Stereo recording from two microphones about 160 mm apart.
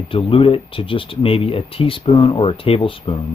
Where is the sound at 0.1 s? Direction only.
35° left (ahead or behind).